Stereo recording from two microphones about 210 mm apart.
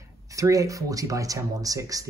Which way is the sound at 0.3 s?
15° right (ahead or behind).